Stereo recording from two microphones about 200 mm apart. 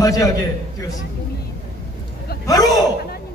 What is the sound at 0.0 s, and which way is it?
Speech, 15° left (ahead or behind).